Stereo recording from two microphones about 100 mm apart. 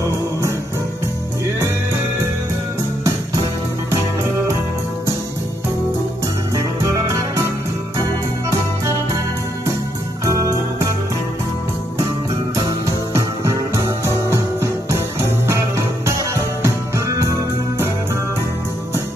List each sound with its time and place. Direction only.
6.5 s music: 35° right (ahead or behind)
10.2 s music: 30° right (ahead or behind)
12.5 s music: 30° right (ahead or behind)